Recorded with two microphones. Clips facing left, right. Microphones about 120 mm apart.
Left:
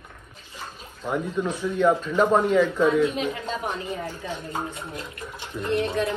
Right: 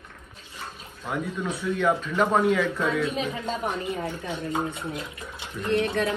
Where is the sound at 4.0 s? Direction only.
25° right (ahead or behind).